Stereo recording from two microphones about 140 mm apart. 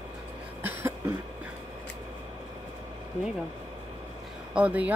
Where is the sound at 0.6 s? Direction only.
15° right (ahead or behind).